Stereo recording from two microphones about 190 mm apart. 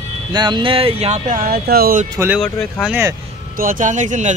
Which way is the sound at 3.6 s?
45° right (ahead or behind).